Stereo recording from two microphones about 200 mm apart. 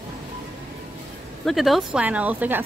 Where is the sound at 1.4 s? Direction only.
Centre (ahead or behind).